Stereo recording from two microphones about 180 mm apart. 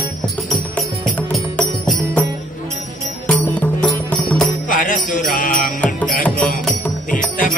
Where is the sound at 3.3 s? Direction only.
5° left (ahead or behind).